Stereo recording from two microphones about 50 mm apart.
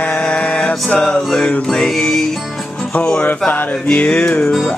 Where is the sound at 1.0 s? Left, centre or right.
Centre.